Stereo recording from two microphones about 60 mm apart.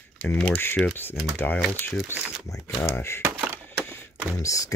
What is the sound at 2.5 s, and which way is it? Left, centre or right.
Speech, left.